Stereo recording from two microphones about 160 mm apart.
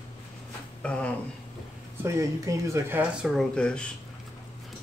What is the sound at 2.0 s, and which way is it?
Speech, 20° right (ahead or behind).